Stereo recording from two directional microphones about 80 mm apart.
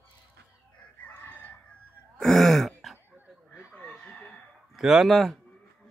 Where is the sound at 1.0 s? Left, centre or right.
Centre.